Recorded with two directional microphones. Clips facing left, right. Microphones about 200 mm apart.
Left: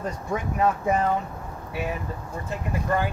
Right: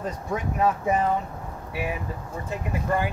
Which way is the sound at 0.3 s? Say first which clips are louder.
Even; centre (ahead or behind).